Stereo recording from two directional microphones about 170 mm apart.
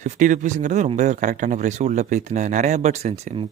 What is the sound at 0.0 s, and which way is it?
Speech, 50° right (ahead or behind).